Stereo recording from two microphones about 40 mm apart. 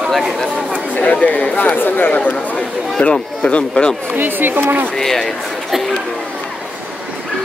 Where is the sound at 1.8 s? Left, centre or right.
Left.